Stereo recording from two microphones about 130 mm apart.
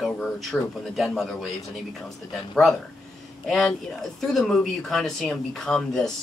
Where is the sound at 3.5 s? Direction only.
5° left (ahead or behind).